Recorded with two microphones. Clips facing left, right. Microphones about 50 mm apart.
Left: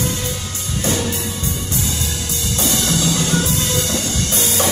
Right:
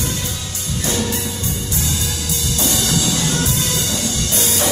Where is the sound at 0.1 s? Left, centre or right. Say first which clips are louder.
Left 1 dB; left.